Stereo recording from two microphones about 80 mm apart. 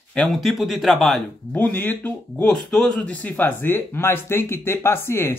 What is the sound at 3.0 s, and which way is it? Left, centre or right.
Speech, centre.